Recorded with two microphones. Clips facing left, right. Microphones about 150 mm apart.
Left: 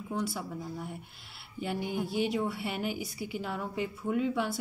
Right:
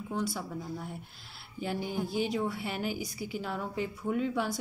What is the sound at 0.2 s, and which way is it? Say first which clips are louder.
Speech: right 1 dB; 5° left (ahead or behind).